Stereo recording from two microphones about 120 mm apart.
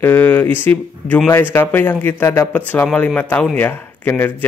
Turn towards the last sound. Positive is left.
turn(degrees=15)  # may be behind; listen again after turning